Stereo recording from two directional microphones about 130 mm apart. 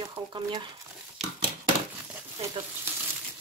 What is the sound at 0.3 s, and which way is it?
Speech, 35° right (ahead or behind).